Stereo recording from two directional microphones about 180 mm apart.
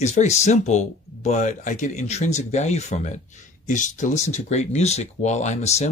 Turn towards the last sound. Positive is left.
turn(degrees=40)  # may be behind; listen again after turning